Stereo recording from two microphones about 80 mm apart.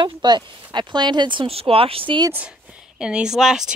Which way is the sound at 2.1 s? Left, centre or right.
Right.